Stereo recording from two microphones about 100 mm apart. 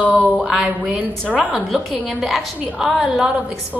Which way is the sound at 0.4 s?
5° right (ahead or behind).